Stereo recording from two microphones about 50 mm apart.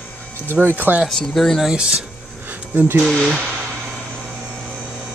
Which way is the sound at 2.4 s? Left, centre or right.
Right.